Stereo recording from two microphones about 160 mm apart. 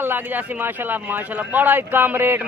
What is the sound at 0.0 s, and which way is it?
A man's voice, 10° right (ahead or behind).